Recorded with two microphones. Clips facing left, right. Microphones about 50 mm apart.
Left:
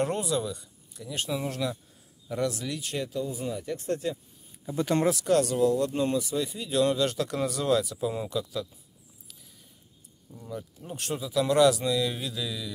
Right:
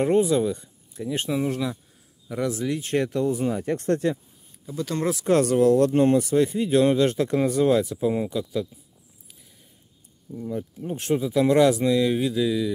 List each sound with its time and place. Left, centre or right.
0.0 s speech: right
1.4 s speech: centre
2.5 s speech: centre
3.0 s speech: right
4.7 s speech: left
5.2 s speech: right
5.6 s speech: right; by 8.6 s centre
10.3 s speech: centre